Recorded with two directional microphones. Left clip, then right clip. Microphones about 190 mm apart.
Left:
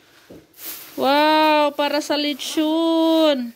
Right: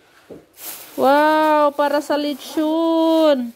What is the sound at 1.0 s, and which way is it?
Speech, 10° right (ahead or behind).